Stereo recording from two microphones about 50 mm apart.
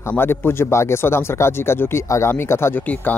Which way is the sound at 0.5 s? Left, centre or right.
Left.